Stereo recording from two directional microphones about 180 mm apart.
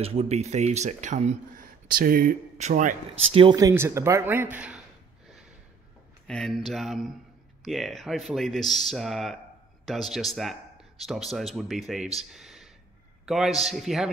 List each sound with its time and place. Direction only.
0.0 s speech: 35° right (ahead or behind)
3.5 s speech: 15° right (ahead or behind)
6.2 s speech: 5° left (ahead or behind)
12.4 s a sound: centre (ahead or behind)
13.2 s speech: centre (ahead or behind)